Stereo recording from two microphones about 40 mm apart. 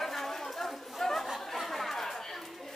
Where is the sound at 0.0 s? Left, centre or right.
Centre.